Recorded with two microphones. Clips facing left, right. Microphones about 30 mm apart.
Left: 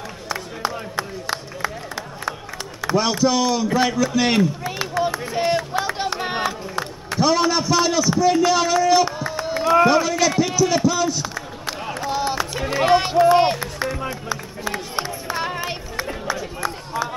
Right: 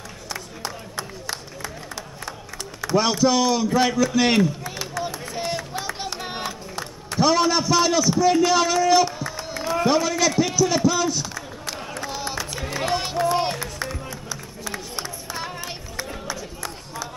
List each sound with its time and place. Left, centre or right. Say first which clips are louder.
0.3 s a sound: left 7 dB; left
3.0 s a man's voice: even; centre
4.6 s run: left 6 dB; left
5.3 s music: left 7 dB; left
7.2 s a man's voice: left 1 dB; centre
9.0 s a sound: left 3 dB; centre
9.8 s a man's voice: left 3 dB; centre
11.2 s run: left 4 dB; centre